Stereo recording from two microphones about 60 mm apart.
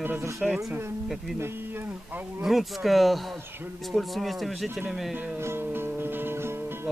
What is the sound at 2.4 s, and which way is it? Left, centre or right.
Speech, centre.